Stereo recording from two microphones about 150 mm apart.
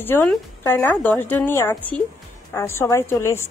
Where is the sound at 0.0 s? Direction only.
15° left (ahead or behind).